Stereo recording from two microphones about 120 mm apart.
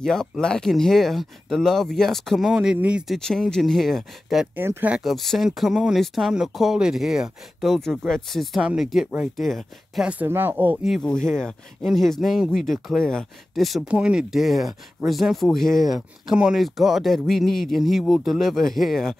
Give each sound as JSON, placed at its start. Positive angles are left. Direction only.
{"t": 0.0, "sound": "speech", "side_deg": 5}
{"t": 3.2, "sound": "speech", "side_deg": 5}
{"t": 4.6, "sound": "speech", "side_deg": -20}
{"t": 4.9, "sound": "speech", "side_deg": 0}
{"t": 10.0, "sound": "speech", "side_deg": -15}
{"t": 10.8, "sound": "speech", "side_deg": 5}